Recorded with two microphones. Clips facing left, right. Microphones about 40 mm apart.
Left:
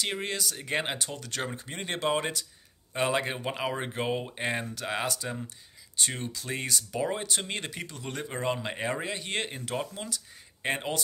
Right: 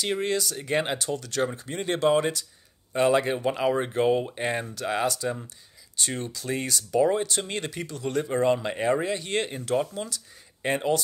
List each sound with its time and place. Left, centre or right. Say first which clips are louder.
0.0 s speech: right 5 dB; centre
0.9 s speech: right 7 dB; centre
9.0 s speech: right 5 dB; centre